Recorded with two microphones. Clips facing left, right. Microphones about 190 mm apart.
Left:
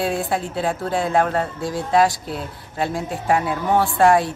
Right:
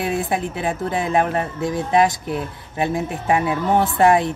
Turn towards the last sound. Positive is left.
turn(degrees=-20)  # may be behind; listen again after turning